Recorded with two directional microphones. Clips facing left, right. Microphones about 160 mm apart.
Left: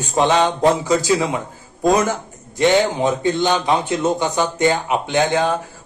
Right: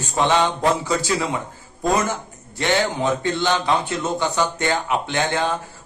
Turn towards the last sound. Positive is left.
turn(degrees=15)  # may be behind; listen again after turning